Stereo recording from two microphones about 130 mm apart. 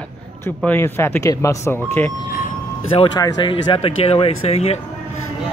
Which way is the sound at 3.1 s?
35° left (ahead or behind).